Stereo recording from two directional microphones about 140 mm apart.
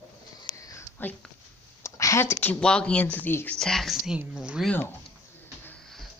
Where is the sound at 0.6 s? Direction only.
20° left (ahead or behind).